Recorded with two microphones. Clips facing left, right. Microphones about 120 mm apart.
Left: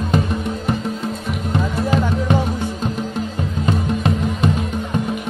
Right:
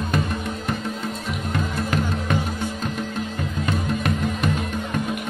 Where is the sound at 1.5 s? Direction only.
25° left (ahead or behind).